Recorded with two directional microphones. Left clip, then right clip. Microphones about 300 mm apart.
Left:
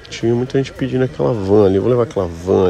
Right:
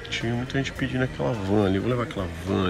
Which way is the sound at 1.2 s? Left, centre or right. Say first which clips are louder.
Left 12 dB; right.